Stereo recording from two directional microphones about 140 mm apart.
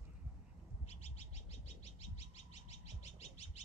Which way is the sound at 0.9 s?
45° left (ahead or behind).